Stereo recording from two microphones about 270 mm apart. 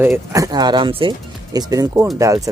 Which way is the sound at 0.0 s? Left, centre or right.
Centre.